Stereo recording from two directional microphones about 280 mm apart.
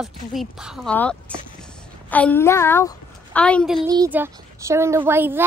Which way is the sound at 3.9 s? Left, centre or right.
Centre.